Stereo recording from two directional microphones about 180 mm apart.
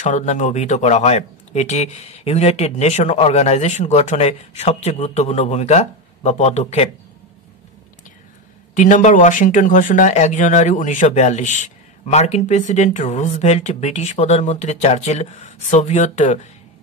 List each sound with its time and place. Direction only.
0.0 s speech: 40° left (ahead or behind)
8.7 s speech: 45° left (ahead or behind)